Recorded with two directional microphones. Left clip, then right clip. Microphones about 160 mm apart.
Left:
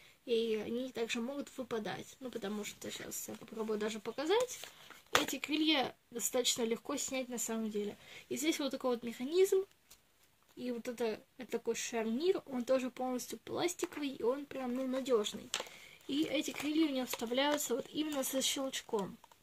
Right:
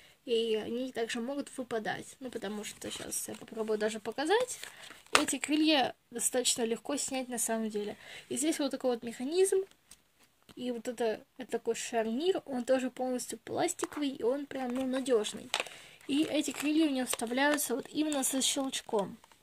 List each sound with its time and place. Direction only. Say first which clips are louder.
0.3 s speech: right 3 dB; 45° right (ahead or behind)
10.6 s speech: right 4 dB; 40° right (ahead or behind)